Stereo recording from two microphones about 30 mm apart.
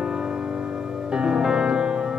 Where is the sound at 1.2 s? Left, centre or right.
Right.